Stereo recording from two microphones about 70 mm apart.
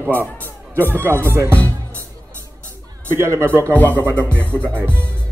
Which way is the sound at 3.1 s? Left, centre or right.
Right.